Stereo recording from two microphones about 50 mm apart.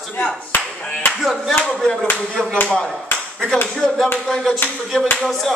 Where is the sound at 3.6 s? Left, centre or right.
Centre.